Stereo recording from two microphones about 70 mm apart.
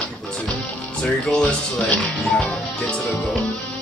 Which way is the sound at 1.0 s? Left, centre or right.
Centre.